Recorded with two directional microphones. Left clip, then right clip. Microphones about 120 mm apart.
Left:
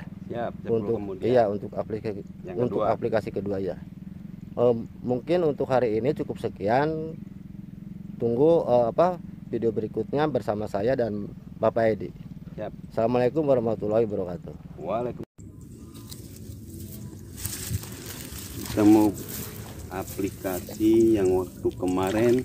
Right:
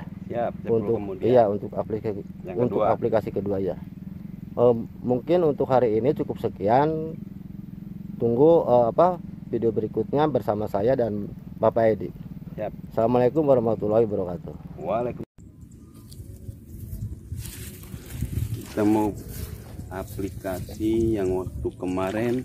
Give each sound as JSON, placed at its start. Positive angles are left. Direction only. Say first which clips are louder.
{"t": 0.3, "sound": "speech", "louder": "right 3 dB", "side_deg": 35}
{"t": 1.2, "sound": "speech", "louder": "right 3 dB", "side_deg": -10}
{"t": 8.2, "sound": "speech", "louder": "right 3 dB", "side_deg": -5}
{"t": 14.8, "sound": "speech", "louder": "right 3 dB", "side_deg": 35}
{"t": 18.8, "sound": "speech", "louder": "left 3 dB", "side_deg": -50}
{"t": 21.8, "sound": "speech", "louder": "even", "side_deg": -50}